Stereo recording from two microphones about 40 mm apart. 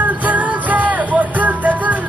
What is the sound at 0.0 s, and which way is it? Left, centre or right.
Music, right.